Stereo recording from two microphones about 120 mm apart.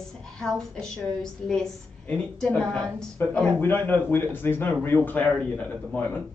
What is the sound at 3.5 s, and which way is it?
A man's voice, 15° left (ahead or behind).